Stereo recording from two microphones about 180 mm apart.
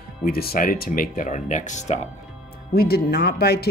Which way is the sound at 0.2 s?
55° left (ahead or behind).